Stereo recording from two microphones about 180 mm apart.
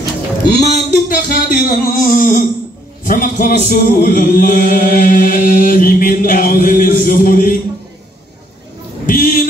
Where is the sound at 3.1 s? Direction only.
50° left (ahead or behind).